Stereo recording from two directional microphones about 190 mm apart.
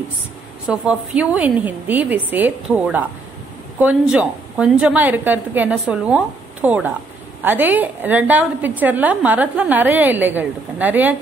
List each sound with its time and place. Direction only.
0.7 s a woman's voice: 5° right (ahead or behind)